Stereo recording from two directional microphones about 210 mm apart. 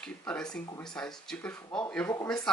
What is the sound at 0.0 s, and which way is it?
Speech, 5° left (ahead or behind).